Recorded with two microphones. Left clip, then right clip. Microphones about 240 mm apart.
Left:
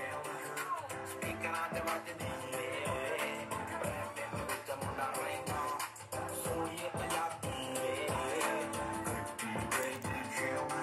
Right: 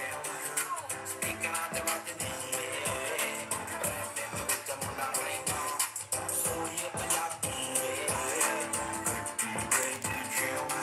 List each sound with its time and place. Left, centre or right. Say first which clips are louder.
1.2 s music: right 3 dB; centre
5.0 s music: right 4 dB; centre
7.7 s music: right 1 dB; centre
8.1 s music: right 3 dB; centre